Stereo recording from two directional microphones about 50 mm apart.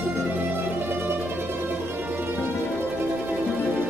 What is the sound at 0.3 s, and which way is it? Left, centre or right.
Mandolin, right.